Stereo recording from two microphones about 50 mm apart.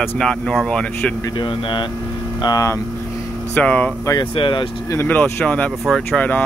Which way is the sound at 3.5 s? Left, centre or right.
Left.